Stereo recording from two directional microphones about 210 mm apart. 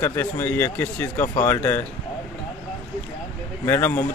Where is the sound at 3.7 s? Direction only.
10° left (ahead or behind).